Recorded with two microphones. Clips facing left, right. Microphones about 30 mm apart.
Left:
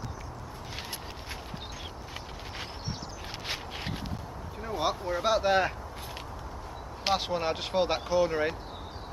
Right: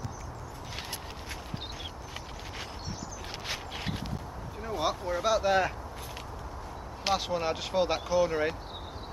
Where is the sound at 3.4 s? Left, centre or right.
Centre.